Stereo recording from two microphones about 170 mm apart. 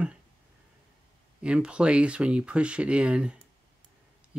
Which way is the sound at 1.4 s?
5° right (ahead or behind).